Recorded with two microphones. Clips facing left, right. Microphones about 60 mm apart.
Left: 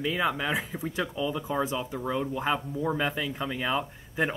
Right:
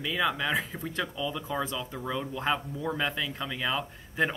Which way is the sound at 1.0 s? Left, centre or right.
Left.